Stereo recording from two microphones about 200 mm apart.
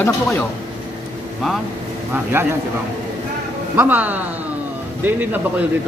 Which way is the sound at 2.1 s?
10° right (ahead or behind).